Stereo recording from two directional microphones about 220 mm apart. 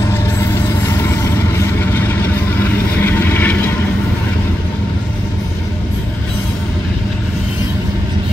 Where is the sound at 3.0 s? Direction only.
10° left (ahead or behind).